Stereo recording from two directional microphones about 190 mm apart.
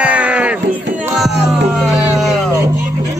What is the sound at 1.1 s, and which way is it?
Music, centre (ahead or behind).